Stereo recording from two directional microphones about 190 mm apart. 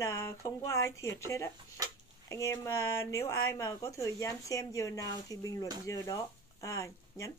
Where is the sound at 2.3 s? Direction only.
15° left (ahead or behind).